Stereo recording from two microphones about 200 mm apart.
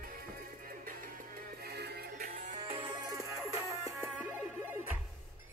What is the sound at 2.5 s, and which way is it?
Music, 30° right (ahead or behind).